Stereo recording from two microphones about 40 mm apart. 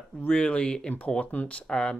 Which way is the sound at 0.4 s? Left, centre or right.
Left.